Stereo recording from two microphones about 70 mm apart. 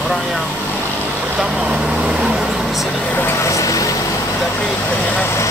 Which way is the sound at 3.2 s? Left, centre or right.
Left.